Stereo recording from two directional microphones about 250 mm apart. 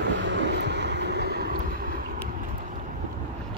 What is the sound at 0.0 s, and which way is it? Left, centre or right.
Vehicle, right.